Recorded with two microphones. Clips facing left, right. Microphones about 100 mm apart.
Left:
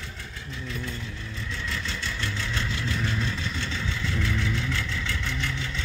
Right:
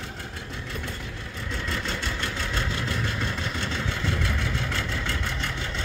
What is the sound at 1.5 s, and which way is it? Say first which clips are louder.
Vehicle: right 4 dB; 45° right (ahead or behind).